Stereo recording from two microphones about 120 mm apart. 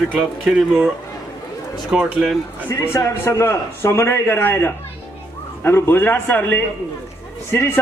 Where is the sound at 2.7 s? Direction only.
20° left (ahead or behind).